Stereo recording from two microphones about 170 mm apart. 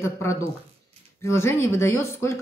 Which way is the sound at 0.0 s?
15° left (ahead or behind).